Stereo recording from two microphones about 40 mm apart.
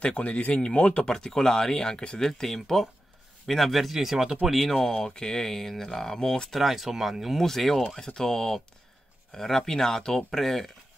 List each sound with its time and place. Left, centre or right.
0.0 s speech: left
1.0 s speech: centre
4.7 s speech: centre
6.5 s speech: centre
7.4 s speech: centre